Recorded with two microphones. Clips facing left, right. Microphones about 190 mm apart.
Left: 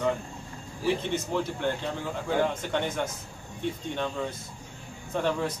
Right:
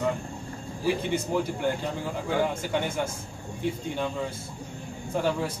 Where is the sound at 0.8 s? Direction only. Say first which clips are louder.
Right 1 dB; 10° right (ahead or behind).